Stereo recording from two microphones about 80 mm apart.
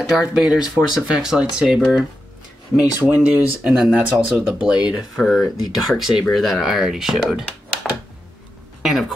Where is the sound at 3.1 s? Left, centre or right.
Centre.